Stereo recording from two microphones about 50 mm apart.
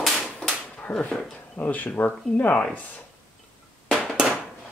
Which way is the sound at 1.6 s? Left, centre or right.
Left.